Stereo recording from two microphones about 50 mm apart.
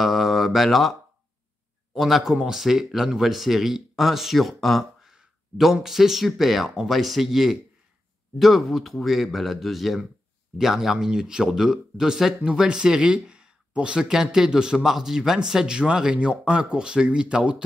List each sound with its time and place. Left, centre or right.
0.0 s mantra: centre
2.0 s speech: centre
5.0 s speech: centre